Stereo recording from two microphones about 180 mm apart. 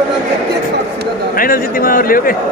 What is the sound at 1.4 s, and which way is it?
Speech, 50° left (ahead or behind).